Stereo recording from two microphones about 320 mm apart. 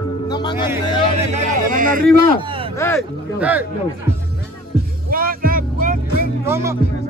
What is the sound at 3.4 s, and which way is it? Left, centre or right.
Speech, centre.